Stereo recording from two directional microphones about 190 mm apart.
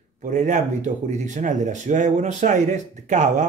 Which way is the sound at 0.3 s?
40° right (ahead or behind).